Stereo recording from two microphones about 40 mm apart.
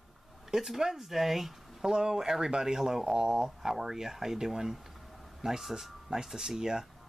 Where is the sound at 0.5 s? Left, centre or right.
Centre.